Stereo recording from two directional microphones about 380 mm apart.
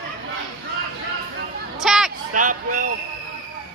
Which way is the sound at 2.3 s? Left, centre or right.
Centre.